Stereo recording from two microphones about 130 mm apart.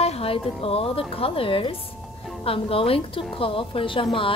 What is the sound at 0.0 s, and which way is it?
A woman's voice, 50° left (ahead or behind).